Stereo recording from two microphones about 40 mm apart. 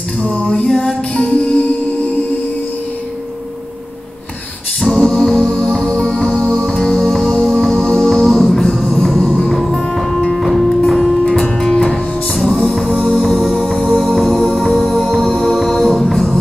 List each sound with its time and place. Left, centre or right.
0.2 s music: left
0.7 s music: centre
4.7 s music: centre
11.2 s music: centre
12.6 s music: centre